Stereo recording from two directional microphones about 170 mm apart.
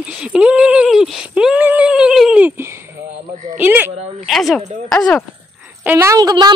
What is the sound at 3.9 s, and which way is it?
Speech, 40° right (ahead or behind).